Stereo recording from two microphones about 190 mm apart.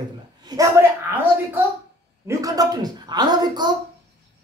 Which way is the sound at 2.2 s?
20° right (ahead or behind).